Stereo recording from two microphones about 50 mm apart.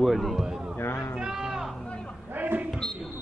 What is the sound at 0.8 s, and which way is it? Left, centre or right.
Speech, left.